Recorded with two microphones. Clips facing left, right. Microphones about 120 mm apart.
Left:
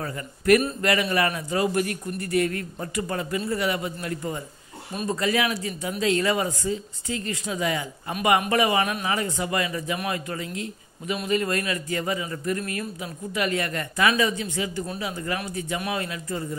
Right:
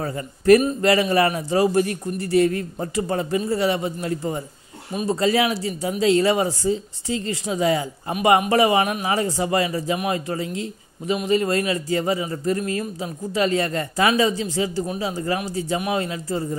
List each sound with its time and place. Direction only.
0.0 s a man's voice: 30° right (ahead or behind)